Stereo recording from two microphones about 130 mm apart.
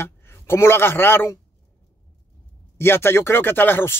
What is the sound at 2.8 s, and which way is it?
Speech, 20° left (ahead or behind).